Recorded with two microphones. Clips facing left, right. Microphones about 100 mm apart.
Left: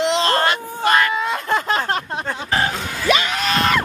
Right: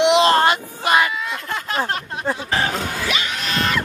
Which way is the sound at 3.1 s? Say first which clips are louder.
Left 6 dB; 55° left (ahead or behind).